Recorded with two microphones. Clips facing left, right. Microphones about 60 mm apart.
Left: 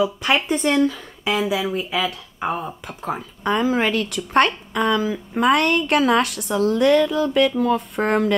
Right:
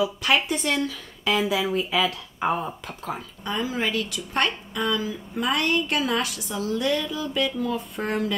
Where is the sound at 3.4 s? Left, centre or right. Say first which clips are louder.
Left 8 dB; left.